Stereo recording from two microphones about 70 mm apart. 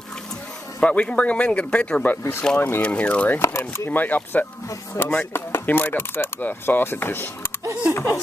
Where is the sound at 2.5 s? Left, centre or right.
Left.